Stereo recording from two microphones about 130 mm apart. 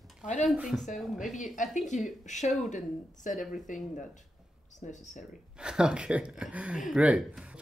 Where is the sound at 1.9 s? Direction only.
65° left (ahead or behind).